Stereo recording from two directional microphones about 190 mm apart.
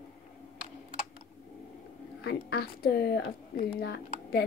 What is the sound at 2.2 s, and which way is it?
A woman's voice, 55° left (ahead or behind).